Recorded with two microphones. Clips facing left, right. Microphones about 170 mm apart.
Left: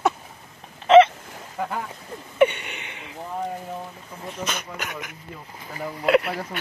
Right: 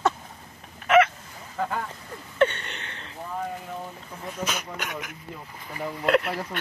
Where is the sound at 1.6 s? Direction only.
15° left (ahead or behind).